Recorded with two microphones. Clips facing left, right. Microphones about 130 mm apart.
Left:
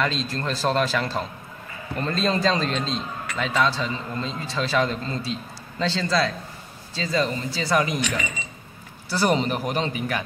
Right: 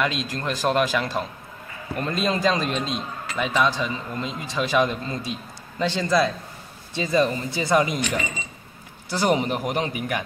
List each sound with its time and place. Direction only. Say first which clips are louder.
0.0 s a man's voice: even; 10° right (ahead or behind)
9.1 s a man's voice: even; 15° right (ahead or behind)